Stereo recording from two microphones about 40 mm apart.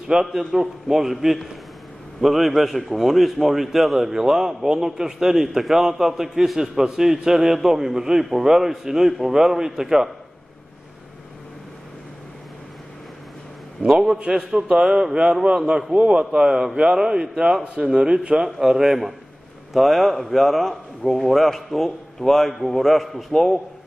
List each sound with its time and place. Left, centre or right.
0.2 s a man's voice: centre
13.8 s a man's voice: centre; by 17.0 s right
17.0 s a man's voice: centre
18.6 s a man's voice: centre